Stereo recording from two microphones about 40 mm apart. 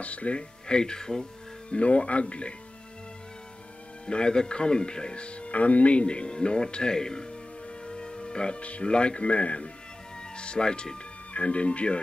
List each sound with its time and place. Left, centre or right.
0.0 s speech: left
0.4 s speech: left
1.7 s speech: left
4.0 s speech: left